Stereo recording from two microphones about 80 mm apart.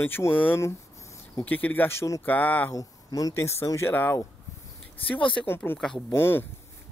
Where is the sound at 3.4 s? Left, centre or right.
Left.